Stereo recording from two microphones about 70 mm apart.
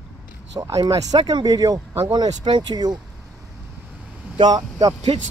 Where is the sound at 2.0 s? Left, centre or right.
Right.